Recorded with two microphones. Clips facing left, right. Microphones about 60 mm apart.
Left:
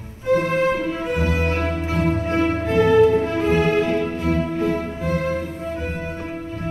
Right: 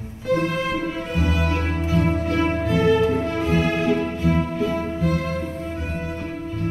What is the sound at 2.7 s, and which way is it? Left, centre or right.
Music, left.